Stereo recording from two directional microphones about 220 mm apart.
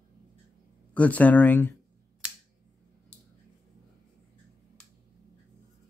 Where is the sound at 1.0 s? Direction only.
5° left (ahead or behind).